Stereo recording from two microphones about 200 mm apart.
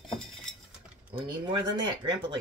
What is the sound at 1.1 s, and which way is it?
Speech, 25° right (ahead or behind).